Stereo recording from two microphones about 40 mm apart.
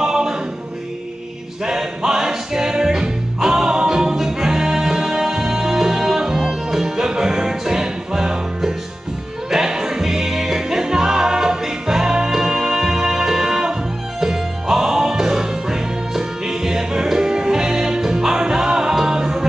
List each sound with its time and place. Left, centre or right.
0.0 s choir: centre
1.7 s music: centre